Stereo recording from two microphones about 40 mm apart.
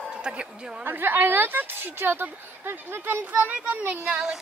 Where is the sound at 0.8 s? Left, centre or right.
Right.